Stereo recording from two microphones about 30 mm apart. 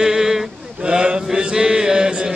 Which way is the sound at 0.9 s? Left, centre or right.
Right.